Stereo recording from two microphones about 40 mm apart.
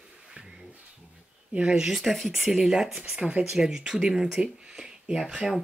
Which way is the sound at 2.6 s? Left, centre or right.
Centre.